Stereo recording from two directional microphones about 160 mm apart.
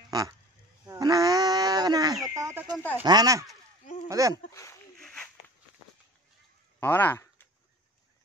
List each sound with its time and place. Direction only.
0.1 s speech: 25° right (ahead or behind)
4.9 s a sound: 5° left (ahead or behind)
6.8 s speech: 10° left (ahead or behind)